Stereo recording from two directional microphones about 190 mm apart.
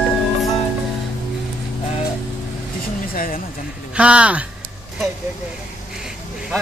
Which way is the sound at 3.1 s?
50° left (ahead or behind).